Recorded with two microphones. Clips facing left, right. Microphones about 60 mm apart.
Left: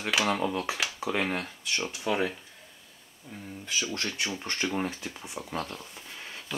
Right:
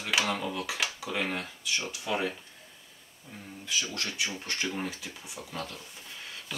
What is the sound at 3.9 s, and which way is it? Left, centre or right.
Speech, left.